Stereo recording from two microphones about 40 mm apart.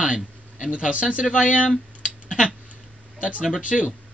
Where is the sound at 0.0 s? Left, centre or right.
Right.